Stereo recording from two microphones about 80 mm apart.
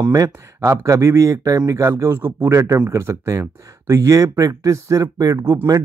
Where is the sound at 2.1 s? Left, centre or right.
Right.